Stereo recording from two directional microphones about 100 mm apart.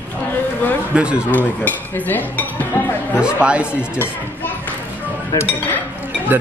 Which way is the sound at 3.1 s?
10° right (ahead or behind).